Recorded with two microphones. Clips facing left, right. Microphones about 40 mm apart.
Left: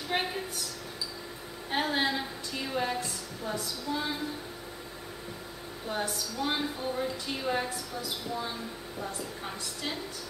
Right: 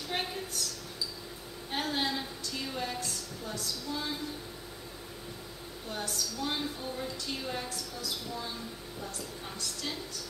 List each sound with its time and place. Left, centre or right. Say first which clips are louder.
0.1 s a sound: left 4 dB; centre
1.7 s a woman's voice: left 4 dB; centre
5.9 s a woman's voice: left 4 dB; centre